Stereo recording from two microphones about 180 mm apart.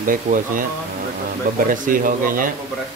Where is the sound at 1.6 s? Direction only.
50° right (ahead or behind).